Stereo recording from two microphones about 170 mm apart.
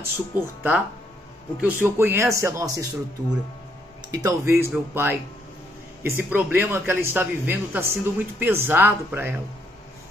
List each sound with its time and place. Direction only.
0.0 s a man's voice: 10° right (ahead or behind)